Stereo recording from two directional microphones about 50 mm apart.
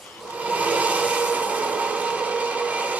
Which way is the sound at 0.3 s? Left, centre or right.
Right.